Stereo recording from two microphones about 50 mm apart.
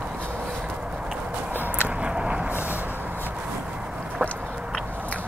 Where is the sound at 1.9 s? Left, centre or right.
Centre.